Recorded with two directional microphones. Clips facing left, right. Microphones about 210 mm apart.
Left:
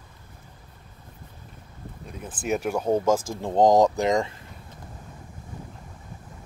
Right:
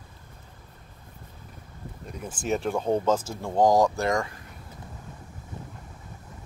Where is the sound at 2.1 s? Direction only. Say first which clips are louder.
Left 1 dB; centre (ahead or behind); by 4.3 s 20° left (ahead or behind).